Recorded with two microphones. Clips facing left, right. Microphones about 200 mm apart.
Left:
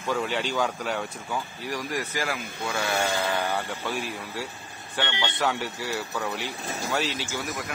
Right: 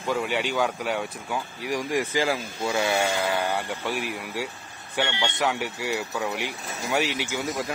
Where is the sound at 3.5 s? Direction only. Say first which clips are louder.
Right 1 dB; 15° right (ahead or behind).